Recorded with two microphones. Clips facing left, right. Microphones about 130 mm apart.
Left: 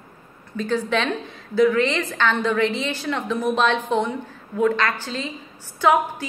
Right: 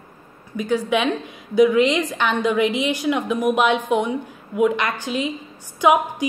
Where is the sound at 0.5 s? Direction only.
10° right (ahead or behind).